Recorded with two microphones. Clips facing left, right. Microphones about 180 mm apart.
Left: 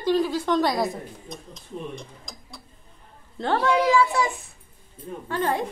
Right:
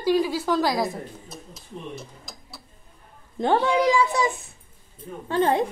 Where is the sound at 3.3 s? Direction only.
15° right (ahead or behind).